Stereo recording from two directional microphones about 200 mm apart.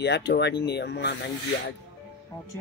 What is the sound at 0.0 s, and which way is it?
Speech, 60° left (ahead or behind).